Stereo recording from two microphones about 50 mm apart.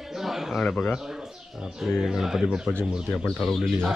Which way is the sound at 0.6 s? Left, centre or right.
Left.